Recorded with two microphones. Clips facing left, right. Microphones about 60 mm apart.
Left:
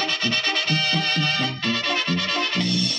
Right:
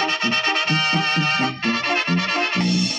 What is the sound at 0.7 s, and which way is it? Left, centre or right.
Music, right.